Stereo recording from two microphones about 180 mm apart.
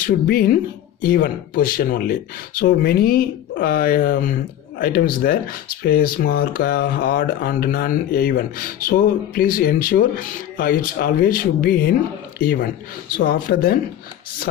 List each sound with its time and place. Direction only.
0.0 s speech: 50° left (ahead or behind)